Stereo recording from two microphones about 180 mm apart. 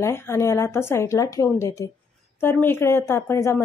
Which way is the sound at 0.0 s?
15° left (ahead or behind).